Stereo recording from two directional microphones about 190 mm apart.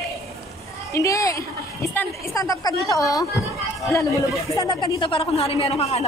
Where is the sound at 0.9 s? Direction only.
15° left (ahead or behind).